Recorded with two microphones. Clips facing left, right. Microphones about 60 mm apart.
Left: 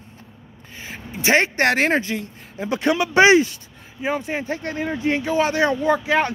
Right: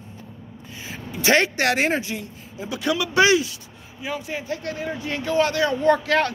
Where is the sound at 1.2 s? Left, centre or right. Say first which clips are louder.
Left 1 dB; left.